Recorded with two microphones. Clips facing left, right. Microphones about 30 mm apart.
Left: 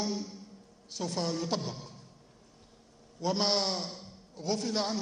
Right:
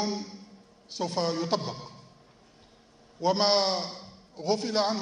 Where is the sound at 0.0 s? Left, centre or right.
Right.